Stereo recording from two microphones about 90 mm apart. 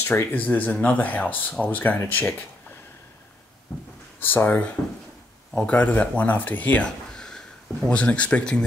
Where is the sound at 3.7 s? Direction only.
25° left (ahead or behind).